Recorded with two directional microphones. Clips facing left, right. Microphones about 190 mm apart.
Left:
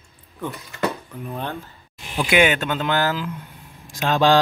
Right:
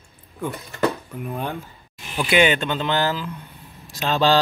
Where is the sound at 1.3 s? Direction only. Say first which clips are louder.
Right 1 dB; 15° right (ahead or behind).